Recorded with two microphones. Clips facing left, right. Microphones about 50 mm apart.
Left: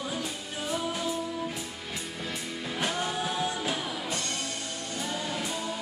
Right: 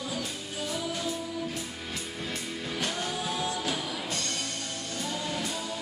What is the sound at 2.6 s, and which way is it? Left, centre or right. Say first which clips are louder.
Music: left 3 dB; centre.